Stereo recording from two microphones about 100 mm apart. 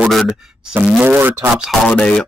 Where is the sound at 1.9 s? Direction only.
10° left (ahead or behind).